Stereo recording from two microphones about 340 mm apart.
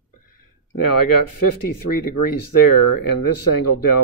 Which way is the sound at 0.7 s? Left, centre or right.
Left.